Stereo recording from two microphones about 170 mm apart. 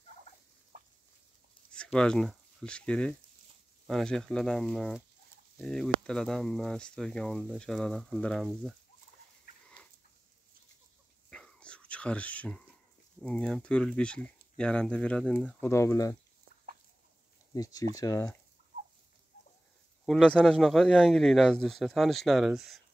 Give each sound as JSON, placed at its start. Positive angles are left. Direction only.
{"t": 1.7, "sound": "speech", "side_deg": 5}
{"t": 11.2, "sound": "whispering", "side_deg": 5}
{"t": 13.2, "sound": "speech", "side_deg": 5}
{"t": 17.6, "sound": "speech", "side_deg": 20}
{"t": 20.1, "sound": "speech", "side_deg": 5}